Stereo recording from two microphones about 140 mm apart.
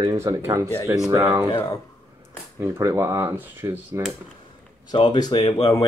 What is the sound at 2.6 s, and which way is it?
Speech, 20° right (ahead or behind).